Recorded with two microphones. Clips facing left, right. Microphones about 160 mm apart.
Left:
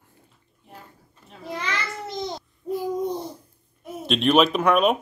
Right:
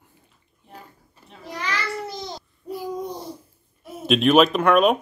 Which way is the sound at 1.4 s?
25° left (ahead or behind).